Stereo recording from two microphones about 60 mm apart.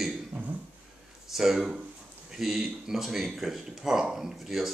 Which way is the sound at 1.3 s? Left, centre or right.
Centre.